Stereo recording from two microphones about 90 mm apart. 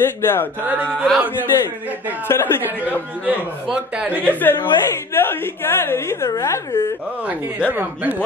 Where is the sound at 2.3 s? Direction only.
30° left (ahead or behind).